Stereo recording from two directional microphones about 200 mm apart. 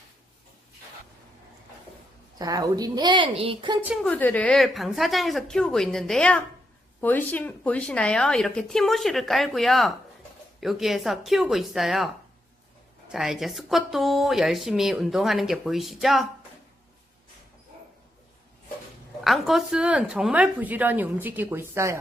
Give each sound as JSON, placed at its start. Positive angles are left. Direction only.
{"t": 2.3, "sound": "a woman's voice", "side_deg": -20}
{"t": 3.8, "sound": "speech", "side_deg": 0}
{"t": 13.1, "sound": "speech", "side_deg": 0}
{"t": 19.2, "sound": "a woman's voice", "side_deg": 0}